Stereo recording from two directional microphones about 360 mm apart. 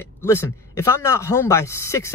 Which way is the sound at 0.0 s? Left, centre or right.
Centre.